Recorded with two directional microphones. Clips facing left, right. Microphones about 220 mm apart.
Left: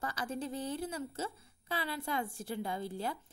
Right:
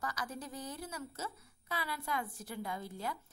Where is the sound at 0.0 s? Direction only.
30° left (ahead or behind).